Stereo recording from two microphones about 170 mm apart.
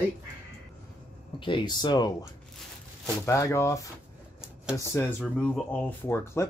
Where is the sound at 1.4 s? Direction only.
25° left (ahead or behind).